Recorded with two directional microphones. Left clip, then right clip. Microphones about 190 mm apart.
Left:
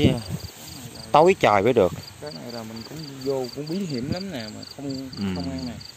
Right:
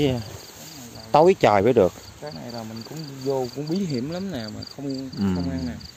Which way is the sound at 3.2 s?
35° right (ahead or behind).